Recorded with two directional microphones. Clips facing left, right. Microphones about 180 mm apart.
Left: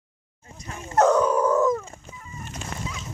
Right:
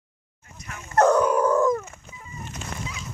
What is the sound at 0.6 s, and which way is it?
Dog, 30° left (ahead or behind).